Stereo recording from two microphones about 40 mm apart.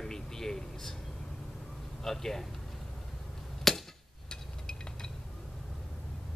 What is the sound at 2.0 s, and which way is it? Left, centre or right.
Speech, centre.